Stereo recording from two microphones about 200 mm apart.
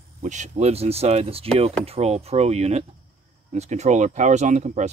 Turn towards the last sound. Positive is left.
turn(degrees=-35)  # may be behind; listen again after turning